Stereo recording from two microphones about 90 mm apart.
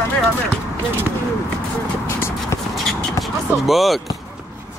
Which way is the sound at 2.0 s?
30° left (ahead or behind).